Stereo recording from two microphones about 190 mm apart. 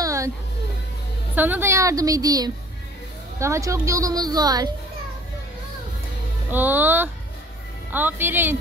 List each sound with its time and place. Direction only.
0.0 s music: 15° right (ahead or behind)
1.3 s speech: 10° right (ahead or behind)
6.5 s speech: 10° right (ahead or behind)